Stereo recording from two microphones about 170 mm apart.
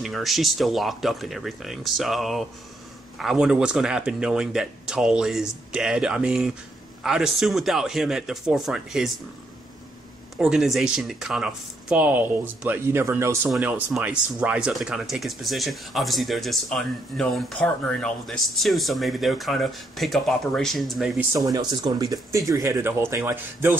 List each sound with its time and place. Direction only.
0.0 s speech: centre (ahead or behind)
10.3 s speech: 5° right (ahead or behind)
21.5 s speech: 20° right (ahead or behind)